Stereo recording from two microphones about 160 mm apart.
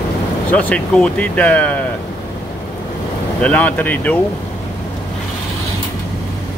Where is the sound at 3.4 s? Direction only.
10° left (ahead or behind).